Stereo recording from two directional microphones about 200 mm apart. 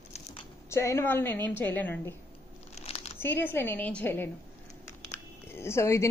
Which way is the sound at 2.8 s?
30° left (ahead or behind).